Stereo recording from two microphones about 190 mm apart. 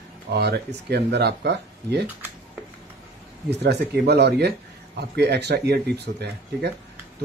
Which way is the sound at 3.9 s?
60° right (ahead or behind).